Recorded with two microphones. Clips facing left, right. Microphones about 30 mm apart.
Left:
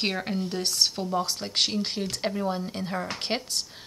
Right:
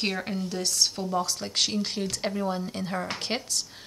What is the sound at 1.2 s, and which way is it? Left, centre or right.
Speech, left.